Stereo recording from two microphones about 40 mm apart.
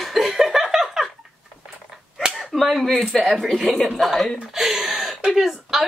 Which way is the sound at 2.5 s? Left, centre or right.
Centre.